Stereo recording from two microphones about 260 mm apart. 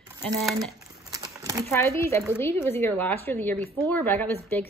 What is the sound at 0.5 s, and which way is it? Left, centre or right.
Crumpling, centre.